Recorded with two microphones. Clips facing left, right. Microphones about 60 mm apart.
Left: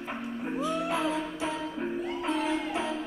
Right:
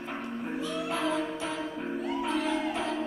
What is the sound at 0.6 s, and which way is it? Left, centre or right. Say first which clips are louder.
Music: left 2 dB; centre.